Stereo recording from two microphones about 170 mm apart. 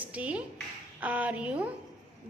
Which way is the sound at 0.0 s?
10° right (ahead or behind).